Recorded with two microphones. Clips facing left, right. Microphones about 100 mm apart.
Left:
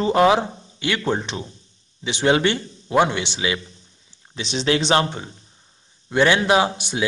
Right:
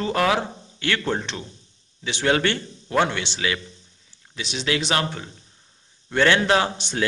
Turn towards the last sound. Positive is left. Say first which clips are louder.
# left 3 dB
turn(degrees=10)  # may be behind; listen again after turning